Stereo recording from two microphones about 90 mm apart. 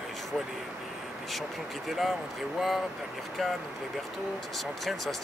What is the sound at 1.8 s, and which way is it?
Speech, centre (ahead or behind).